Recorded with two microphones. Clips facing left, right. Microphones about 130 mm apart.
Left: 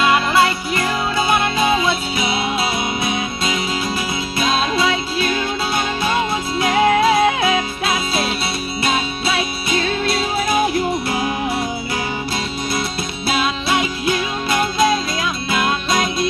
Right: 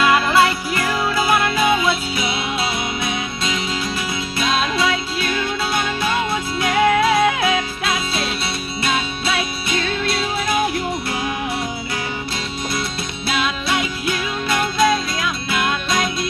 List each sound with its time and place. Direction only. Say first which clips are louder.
0.0 s music: even; 20° left (ahead or behind)
4.7 s music: left 2 dB; centre (ahead or behind)
6.6 s music: left 1 dB; centre (ahead or behind)
13.3 s music: left 2 dB; centre (ahead or behind)